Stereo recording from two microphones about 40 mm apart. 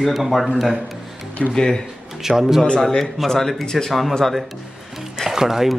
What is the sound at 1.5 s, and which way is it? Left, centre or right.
Speech, centre.